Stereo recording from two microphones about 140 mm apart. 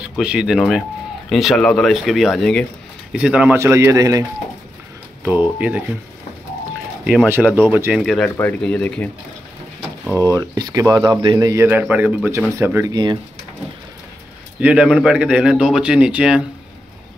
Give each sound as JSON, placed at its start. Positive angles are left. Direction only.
{"t": 0.0, "sound": "a man's voice", "side_deg": -5}
{"t": 5.2, "sound": "speech", "side_deg": -10}
{"t": 7.2, "sound": "speech", "side_deg": -15}
{"t": 8.0, "sound": "speech", "side_deg": 5}
{"t": 10.3, "sound": "a man's voice", "side_deg": -25}
{"t": 12.9, "sound": "speech", "side_deg": -30}
{"t": 14.6, "sound": "speech", "side_deg": -10}